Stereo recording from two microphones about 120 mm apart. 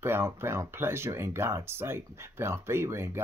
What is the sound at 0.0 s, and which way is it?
Speech, 20° right (ahead or behind).